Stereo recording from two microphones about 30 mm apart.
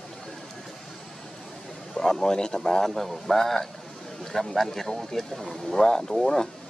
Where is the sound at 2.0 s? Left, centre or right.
Centre.